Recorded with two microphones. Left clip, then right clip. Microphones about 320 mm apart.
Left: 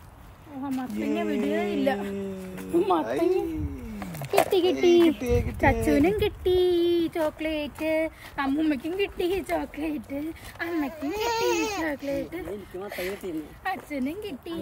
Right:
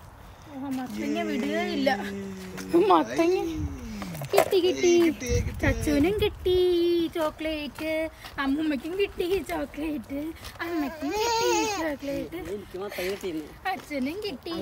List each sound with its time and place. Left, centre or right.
0.7 s speech: centre
2.7 s speech: right
4.5 s a child's voice: centre
4.7 s speech: centre